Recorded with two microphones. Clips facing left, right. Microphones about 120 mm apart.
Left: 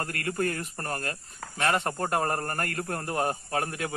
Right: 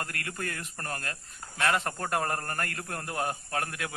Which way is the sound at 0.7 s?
30° left (ahead or behind).